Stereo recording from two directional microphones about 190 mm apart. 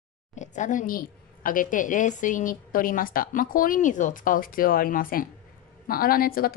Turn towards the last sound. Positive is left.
turn(degrees=50)  # may be behind; listen again after turning